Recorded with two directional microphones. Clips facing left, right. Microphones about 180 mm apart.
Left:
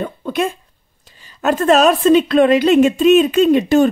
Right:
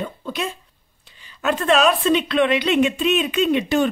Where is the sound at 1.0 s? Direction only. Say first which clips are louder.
Left 5 dB; 40° left (ahead or behind).